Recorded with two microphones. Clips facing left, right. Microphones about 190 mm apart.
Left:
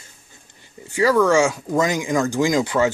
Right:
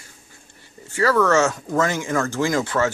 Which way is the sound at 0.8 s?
15° left (ahead or behind).